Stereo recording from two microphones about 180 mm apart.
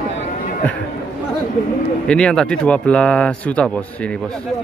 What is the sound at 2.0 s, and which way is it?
Speech, 5° left (ahead or behind).